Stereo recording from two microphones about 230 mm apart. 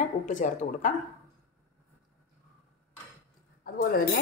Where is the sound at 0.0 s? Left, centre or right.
Left.